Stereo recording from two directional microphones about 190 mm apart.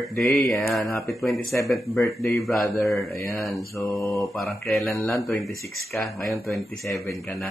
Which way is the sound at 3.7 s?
10° left (ahead or behind).